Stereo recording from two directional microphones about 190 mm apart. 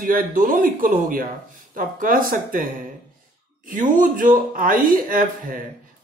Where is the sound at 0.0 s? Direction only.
50° right (ahead or behind).